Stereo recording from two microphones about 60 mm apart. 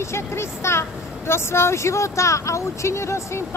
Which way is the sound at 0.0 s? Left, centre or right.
Left.